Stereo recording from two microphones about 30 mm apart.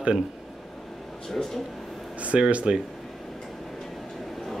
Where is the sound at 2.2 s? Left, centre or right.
Right.